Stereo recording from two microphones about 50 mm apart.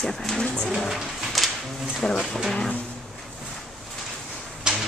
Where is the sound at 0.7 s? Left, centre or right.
Centre.